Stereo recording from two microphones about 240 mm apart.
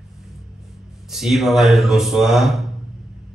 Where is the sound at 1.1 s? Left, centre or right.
Centre.